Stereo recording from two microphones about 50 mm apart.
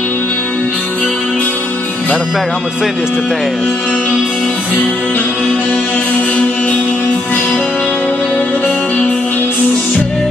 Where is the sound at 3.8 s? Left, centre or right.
Left.